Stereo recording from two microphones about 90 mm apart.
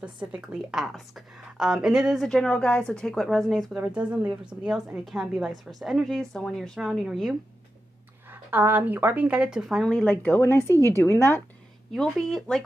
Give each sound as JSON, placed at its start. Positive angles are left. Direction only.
{"t": 0.0, "sound": "a woman's voice", "side_deg": -15}
{"t": 2.2, "sound": "a woman's voice", "side_deg": 10}
{"t": 3.7, "sound": "a woman's voice", "side_deg": -15}
{"t": 8.3, "sound": "a woman's voice", "side_deg": -20}
{"t": 9.8, "sound": "a woman's voice", "side_deg": 5}
{"t": 10.2, "sound": "a woman's voice", "side_deg": 25}
{"t": 11.9, "sound": "speech", "side_deg": 0}